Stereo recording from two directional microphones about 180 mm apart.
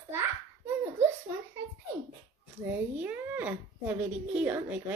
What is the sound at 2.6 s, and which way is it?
A woman's voice, 10° right (ahead or behind).